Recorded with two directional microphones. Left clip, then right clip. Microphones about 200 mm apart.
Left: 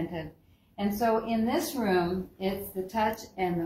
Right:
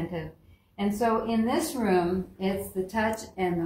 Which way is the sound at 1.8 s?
Centre (ahead or behind).